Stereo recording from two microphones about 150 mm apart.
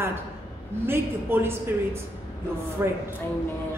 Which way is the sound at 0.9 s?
15° right (ahead or behind).